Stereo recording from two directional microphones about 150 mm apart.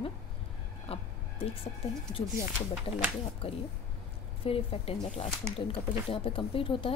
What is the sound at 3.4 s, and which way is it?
Speech, 40° left (ahead or behind).